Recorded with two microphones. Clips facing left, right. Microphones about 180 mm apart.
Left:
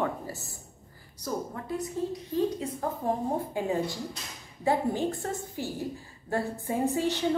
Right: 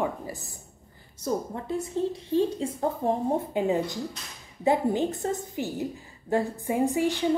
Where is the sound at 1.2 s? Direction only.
25° right (ahead or behind).